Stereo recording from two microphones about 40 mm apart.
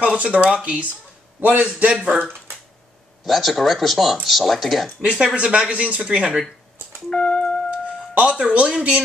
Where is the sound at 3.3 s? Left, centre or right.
Centre.